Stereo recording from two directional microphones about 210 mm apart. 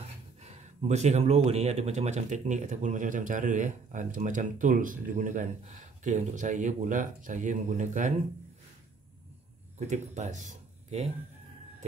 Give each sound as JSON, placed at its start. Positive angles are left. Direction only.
{"t": 0.4, "sound": "speech", "side_deg": -30}
{"t": 9.8, "sound": "speech", "side_deg": -35}